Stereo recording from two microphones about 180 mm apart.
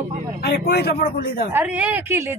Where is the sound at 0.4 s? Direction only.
65° left (ahead or behind).